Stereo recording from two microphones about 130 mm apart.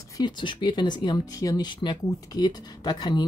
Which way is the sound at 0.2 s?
35° left (ahead or behind).